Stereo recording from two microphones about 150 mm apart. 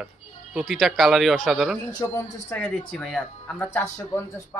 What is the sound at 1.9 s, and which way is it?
Speech, 25° left (ahead or behind).